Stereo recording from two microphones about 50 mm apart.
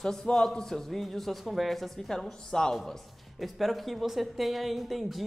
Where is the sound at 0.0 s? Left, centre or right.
Centre.